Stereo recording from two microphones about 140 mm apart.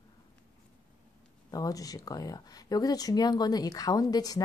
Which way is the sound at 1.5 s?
25° left (ahead or behind).